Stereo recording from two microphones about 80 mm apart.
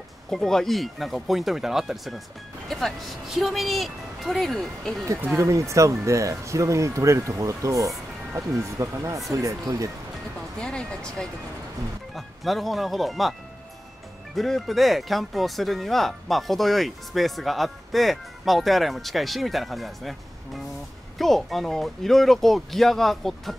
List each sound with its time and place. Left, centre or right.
0.3 s speech: centre
5.2 s speech: right
10.6 s speech: centre
14.3 s speech: centre